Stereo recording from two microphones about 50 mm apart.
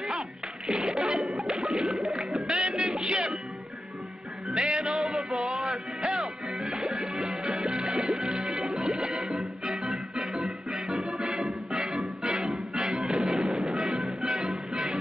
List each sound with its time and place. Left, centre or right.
0.7 s music: centre
4.5 s music: centre
4.7 s music: centre